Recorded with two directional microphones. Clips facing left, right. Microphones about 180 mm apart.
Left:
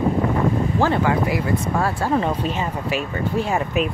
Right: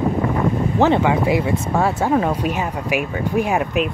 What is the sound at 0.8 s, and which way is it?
Speech, 20° right (ahead or behind).